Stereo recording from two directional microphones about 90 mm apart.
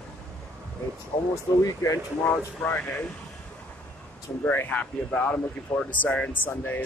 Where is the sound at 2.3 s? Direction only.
20° left (ahead or behind).